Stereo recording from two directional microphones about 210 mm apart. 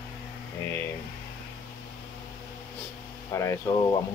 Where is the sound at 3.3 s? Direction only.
15° left (ahead or behind).